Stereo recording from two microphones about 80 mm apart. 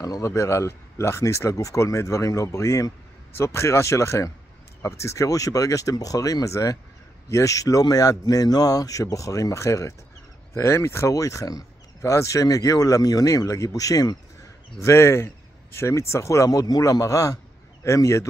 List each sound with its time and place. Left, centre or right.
0.0 s speech: left
14.8 s speech: left